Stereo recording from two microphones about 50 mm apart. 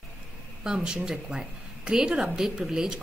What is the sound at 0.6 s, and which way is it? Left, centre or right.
A woman's voice, centre.